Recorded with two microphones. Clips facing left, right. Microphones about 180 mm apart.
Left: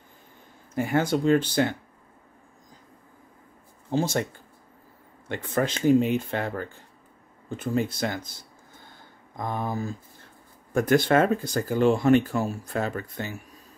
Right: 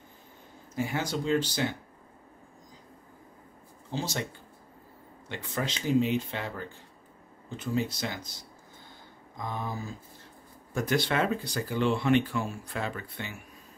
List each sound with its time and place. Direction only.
0.7 s speech: 55° left (ahead or behind)
3.9 s speech: 50° left (ahead or behind)
5.3 s speech: 50° left (ahead or behind)
9.4 s speech: 50° left (ahead or behind)